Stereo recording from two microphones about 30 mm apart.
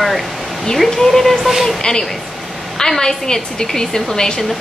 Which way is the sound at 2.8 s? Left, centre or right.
Centre.